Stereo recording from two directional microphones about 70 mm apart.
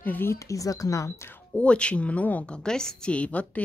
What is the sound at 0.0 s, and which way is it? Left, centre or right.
Speech, left.